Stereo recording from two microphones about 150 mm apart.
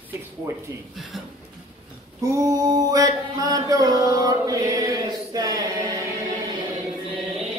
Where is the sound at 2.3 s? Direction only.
25° right (ahead or behind).